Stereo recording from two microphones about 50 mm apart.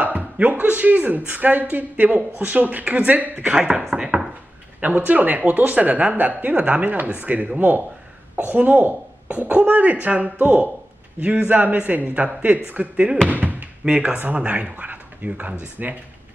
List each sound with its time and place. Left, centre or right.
0.0 s speech: right
3.4 s speech: centre
3.9 s a sound: centre
4.7 s speech: right
13.3 s a sound: right
13.8 s speech: right